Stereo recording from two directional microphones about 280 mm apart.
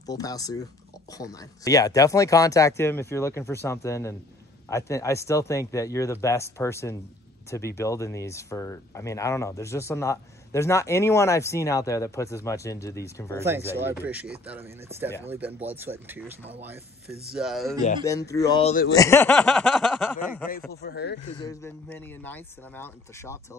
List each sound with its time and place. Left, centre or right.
0.0 s speech: centre
13.4 s speech: centre
18.0 s speech: centre
18.9 s speech: centre
20.8 s speech: left
21.4 s speech: centre